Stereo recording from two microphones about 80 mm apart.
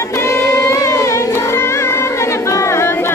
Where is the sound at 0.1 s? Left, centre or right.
Left.